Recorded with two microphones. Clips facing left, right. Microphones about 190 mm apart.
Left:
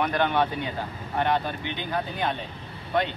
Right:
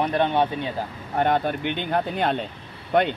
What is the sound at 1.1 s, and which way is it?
Speech, 50° right (ahead or behind).